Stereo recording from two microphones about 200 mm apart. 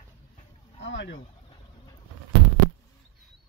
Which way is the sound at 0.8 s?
60° left (ahead or behind).